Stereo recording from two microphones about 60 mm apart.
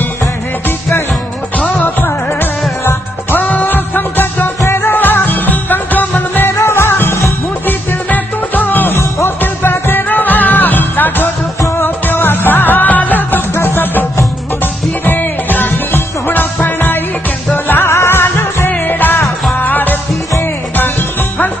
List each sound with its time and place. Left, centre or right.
1.8 s music: left
4.6 s music: left
7.6 s music: left
13.6 s music: left